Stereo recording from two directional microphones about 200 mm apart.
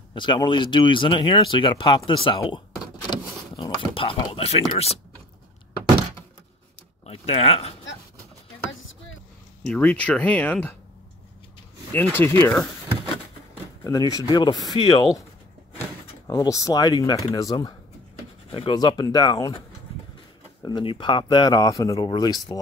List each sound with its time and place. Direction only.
0.1 s speech: 25° left (ahead or behind)
3.1 s power windows: 25° left (ahead or behind)
7.1 s speech: 30° left (ahead or behind)
9.7 s speech: 5° left (ahead or behind)
11.9 s speech: 10° left (ahead or behind)
13.8 s speech: 15° left (ahead or behind)
16.3 s speech: 15° left (ahead or behind)
20.6 s speech: 25° left (ahead or behind)